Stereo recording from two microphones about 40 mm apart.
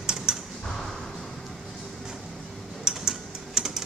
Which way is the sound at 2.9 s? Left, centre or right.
Centre.